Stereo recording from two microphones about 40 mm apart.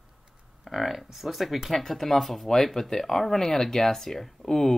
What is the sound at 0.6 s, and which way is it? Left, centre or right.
Speech, centre.